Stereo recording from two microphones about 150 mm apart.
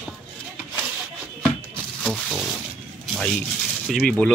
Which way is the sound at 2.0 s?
Centre (ahead or behind).